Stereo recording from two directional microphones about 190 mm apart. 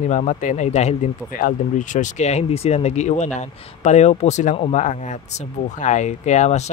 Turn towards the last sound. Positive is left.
turn(degrees=35)  # may be behind; listen again after turning